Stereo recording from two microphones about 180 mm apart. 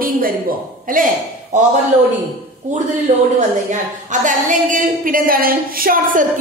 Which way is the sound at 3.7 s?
45° right (ahead or behind).